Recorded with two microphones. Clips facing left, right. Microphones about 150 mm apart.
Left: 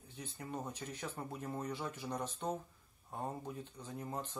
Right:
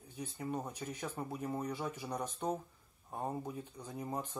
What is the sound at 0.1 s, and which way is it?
Speech, 10° right (ahead or behind).